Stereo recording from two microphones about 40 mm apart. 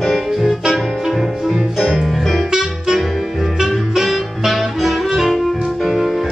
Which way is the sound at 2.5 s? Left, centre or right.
Centre.